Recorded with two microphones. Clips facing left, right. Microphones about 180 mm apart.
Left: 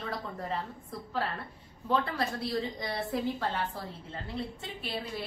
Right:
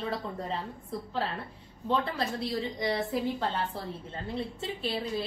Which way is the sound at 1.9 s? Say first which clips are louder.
Even; 25° right (ahead or behind).